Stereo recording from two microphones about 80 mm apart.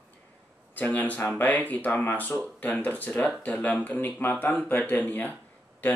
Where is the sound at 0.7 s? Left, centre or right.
Left.